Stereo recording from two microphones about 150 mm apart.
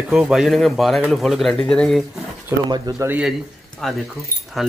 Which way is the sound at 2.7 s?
25° right (ahead or behind).